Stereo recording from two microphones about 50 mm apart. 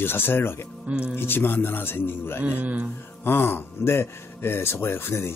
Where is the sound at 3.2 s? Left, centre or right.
Left.